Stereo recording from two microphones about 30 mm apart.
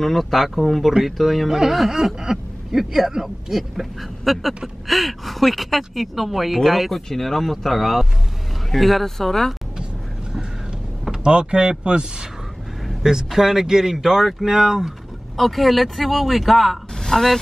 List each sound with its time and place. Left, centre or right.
0.0 s speech: centre
4.2 s speech: centre
7.5 s speech: centre
11.2 s speech: right
13.3 s speech: centre
15.3 s a woman's voice: centre